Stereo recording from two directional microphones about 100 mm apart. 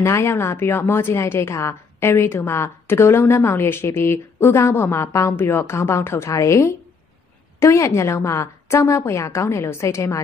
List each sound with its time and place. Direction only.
0.0 s a woman's voice: 30° left (ahead or behind)